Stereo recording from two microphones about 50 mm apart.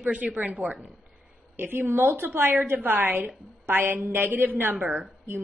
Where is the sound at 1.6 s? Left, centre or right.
Right.